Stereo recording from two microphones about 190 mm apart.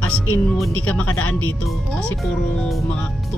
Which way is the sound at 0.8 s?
5° left (ahead or behind).